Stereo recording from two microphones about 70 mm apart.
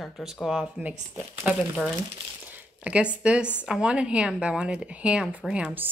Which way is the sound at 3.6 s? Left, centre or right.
Centre.